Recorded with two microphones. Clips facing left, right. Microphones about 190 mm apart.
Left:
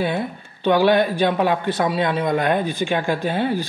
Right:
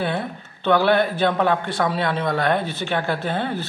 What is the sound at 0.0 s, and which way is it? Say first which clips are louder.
Speech: left 2 dB; 15° left (ahead or behind).